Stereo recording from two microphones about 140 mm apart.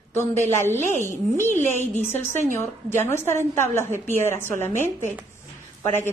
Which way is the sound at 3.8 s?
55° right (ahead or behind).